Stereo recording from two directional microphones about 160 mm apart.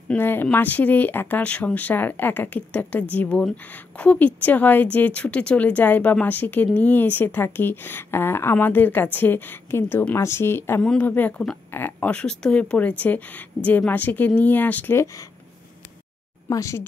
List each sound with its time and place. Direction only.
0.1 s speech: 10° left (ahead or behind)
16.4 s speech: 20° left (ahead or behind)